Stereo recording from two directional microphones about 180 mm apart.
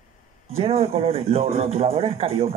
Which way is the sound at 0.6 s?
35° right (ahead or behind).